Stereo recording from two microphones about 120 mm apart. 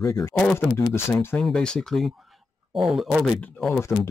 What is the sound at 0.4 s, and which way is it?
Speech, 15° left (ahead or behind).